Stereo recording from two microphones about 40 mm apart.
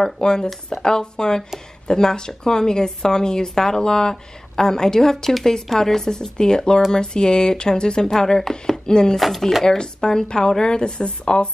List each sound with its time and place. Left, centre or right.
0.0 s a woman's voice: centre
9.1 s speech: centre
10.0 s speech: centre